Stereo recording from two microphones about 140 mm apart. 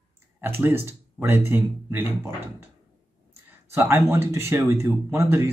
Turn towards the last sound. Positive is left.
turn(degrees=-20)  # may be behind; listen again after turning